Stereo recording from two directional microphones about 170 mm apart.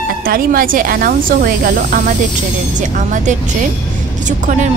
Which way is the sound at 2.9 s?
45° right (ahead or behind).